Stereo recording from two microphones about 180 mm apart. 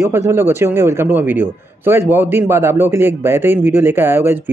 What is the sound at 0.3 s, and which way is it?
A man's voice, 15° right (ahead or behind).